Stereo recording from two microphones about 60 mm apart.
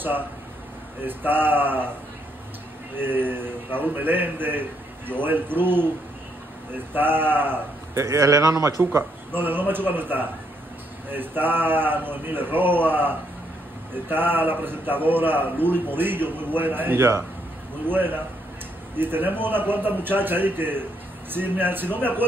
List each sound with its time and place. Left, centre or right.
1.0 s a man's voice: right
3.0 s a man's voice: right
8.0 s a man's voice: right
8.9 s a man's voice: right